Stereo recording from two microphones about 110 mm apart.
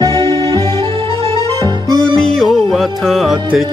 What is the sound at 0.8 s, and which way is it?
Music, 55° right (ahead or behind).